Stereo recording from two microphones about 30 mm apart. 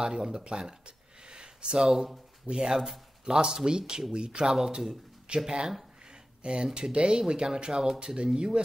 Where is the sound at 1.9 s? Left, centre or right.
Centre.